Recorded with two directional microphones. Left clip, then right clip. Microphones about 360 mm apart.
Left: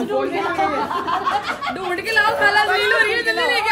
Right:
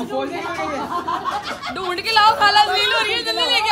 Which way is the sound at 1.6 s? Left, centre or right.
Right.